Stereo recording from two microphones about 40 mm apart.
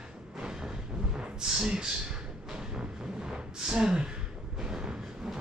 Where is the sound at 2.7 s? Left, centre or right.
Centre.